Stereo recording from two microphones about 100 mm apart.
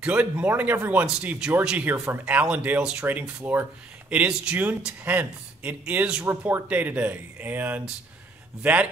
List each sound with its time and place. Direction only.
0.0 s speech: 15° right (ahead or behind)